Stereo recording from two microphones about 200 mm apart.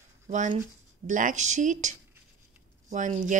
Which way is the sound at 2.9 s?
40° right (ahead or behind).